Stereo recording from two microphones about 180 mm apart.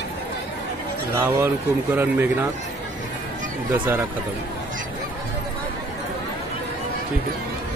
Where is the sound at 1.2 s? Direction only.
15° right (ahead or behind).